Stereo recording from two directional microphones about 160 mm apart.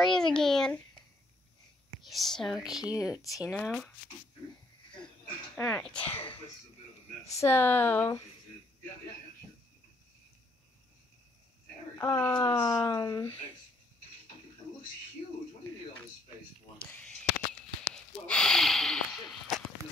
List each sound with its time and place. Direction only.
0.0 s a sound: 5° left (ahead or behind)
2.0 s speech: centre (ahead or behind)
2.8 s speech: 20° left (ahead or behind)
3.5 s speech: 5° left (ahead or behind)
5.6 s speech: 5° left (ahead or behind)
12.0 s speech: 15° left (ahead or behind)
16.9 s a sound: 5° left (ahead or behind)
17.8 s snort: 5° left (ahead or behind)